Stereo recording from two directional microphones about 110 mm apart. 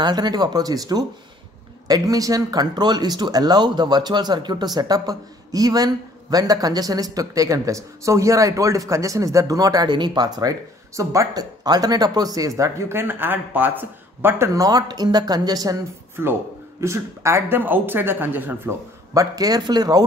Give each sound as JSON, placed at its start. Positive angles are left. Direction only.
{"t": 0.0, "sound": "speech", "side_deg": -40}
{"t": 16.8, "sound": "speech", "side_deg": -25}
{"t": 19.1, "sound": "speech", "side_deg": -35}